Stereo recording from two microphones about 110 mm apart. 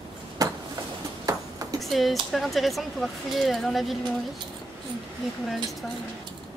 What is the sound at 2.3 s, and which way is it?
Speech, centre (ahead or behind).